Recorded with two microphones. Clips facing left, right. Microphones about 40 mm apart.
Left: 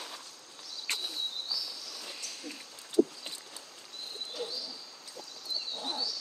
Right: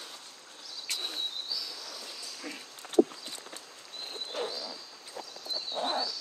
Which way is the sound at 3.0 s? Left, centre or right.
Right.